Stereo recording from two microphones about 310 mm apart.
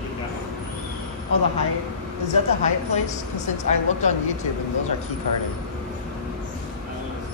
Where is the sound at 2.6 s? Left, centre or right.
Left.